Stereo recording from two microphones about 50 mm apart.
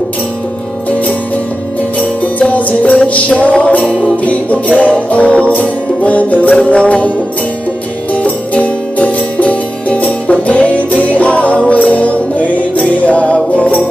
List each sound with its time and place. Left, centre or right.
2.2 s music: left
8.1 s music: left